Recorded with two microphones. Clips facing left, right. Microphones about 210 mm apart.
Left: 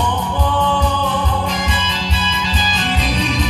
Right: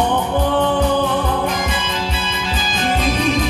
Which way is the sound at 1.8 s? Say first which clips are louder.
Even; 55° right (ahead or behind).